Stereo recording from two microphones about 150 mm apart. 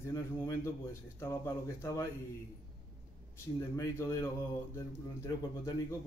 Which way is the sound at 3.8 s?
20° left (ahead or behind).